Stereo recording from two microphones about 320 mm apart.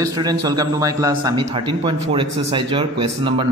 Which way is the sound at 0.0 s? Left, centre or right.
Centre.